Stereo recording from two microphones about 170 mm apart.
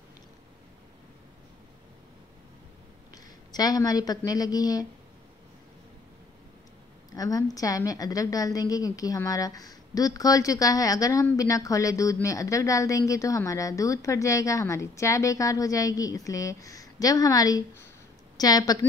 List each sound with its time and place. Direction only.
3.1 s speech: 20° left (ahead or behind)
7.2 s a woman's voice: 20° left (ahead or behind)